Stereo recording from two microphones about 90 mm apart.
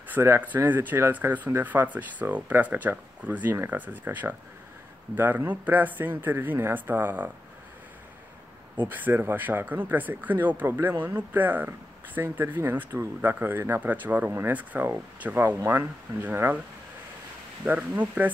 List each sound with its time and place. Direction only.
0.2 s speech: 30° right (ahead or behind)
8.8 s speech: 20° right (ahead or behind)
17.6 s speech: 20° right (ahead or behind)